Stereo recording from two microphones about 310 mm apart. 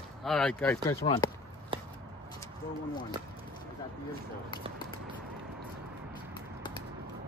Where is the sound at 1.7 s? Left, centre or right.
Centre.